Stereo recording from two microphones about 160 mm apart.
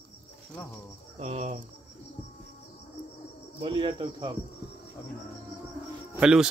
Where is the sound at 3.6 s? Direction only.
30° right (ahead or behind).